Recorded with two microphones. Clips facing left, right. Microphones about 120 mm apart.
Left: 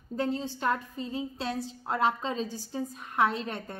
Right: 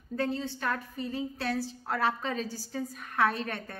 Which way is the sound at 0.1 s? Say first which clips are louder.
Left 1 dB; 25° left (ahead or behind).